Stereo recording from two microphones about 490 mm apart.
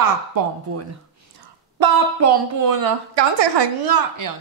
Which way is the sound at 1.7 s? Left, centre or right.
Right.